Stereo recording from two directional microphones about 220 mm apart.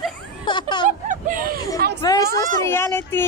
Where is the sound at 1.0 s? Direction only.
40° right (ahead or behind).